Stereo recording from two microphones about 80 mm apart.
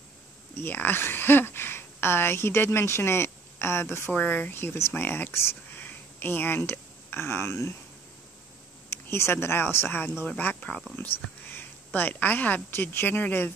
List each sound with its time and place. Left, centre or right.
0.6 s speech: left
4.1 s speech: left
8.9 s speech: left